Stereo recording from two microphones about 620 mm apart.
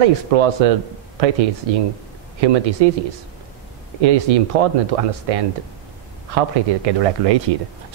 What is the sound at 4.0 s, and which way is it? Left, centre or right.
Speech, right.